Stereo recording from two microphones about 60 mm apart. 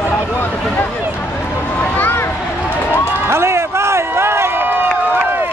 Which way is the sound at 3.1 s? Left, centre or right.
Right.